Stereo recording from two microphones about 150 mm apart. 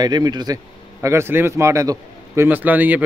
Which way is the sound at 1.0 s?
15° right (ahead or behind).